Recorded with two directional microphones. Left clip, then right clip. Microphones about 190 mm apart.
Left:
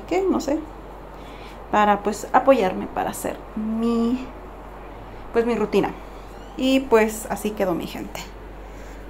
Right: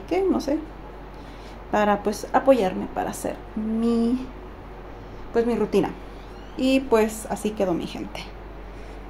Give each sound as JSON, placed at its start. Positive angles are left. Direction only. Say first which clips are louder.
{"t": 0.1, "sound": "a woman's voice", "louder": "left 1 dB", "side_deg": 0}
{"t": 1.7, "sound": "a woman's voice", "louder": "left 3 dB", "side_deg": 0}
{"t": 5.3, "sound": "a woman's voice", "louder": "left 1 dB", "side_deg": -5}